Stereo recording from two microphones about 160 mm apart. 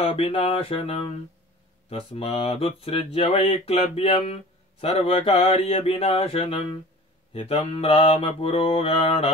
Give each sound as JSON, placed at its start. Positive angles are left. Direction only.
{"t": 0.0, "sound": "speech", "side_deg": 35}